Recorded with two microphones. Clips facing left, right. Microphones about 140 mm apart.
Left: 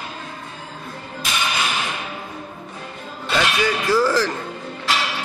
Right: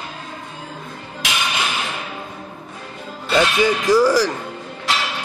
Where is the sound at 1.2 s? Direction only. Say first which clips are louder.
Right 2 dB; 90° right.